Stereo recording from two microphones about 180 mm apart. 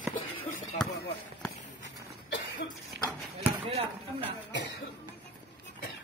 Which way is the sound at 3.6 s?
30° right (ahead or behind).